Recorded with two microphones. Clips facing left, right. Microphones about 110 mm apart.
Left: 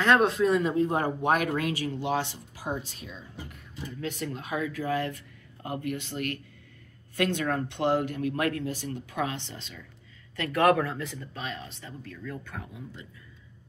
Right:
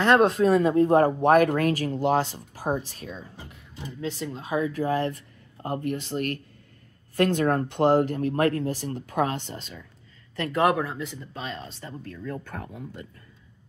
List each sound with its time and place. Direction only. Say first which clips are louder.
0.0 s speech: right 3 dB; 35° right (ahead or behind)
3.4 s speech: even; 25° right (ahead or behind); by 9.8 s 45° right (ahead or behind)
10.3 s speech: even; 25° right (ahead or behind)
11.3 s speech: right 3 dB; 30° right (ahead or behind)